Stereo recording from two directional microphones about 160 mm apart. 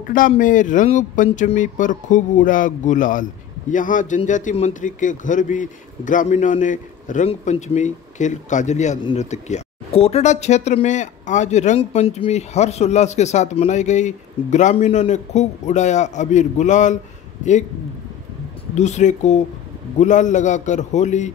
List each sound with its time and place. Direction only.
0.0 s speech: 60° left (ahead or behind)
18.8 s speech: 45° left (ahead or behind)